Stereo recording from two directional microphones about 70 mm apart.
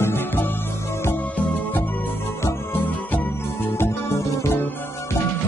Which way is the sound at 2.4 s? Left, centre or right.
Left.